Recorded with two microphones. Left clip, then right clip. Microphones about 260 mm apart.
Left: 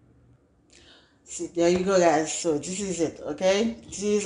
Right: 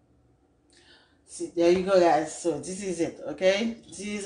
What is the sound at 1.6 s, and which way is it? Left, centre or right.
Speech, left.